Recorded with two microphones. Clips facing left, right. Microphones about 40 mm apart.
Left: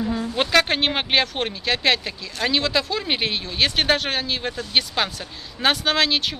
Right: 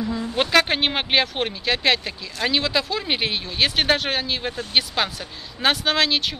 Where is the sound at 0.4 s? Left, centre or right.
Centre.